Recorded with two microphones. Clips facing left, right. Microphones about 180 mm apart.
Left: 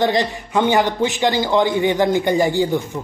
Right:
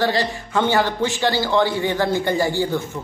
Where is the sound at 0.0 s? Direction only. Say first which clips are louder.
Left 3 dB; 20° left (ahead or behind).